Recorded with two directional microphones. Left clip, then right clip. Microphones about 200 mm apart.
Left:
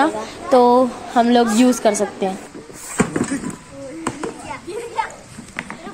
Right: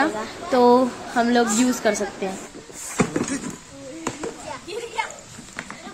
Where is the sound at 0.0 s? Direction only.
25° left (ahead or behind).